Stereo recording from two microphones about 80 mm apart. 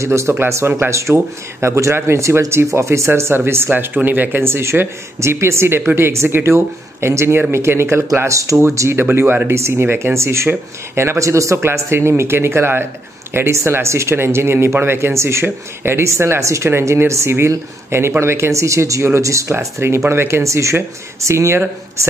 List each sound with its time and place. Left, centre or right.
0.0 s speech: right